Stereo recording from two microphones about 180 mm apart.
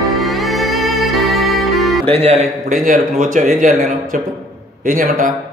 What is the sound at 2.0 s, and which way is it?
Speech, 35° right (ahead or behind).